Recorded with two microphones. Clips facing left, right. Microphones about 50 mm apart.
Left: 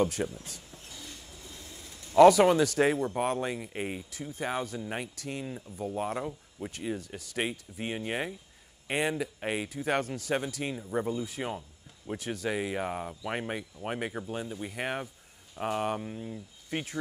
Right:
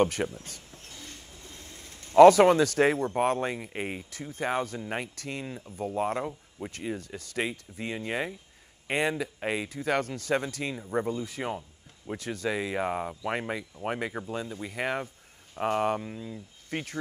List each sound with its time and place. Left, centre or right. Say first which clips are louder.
0.0 s speech: right 3 dB; right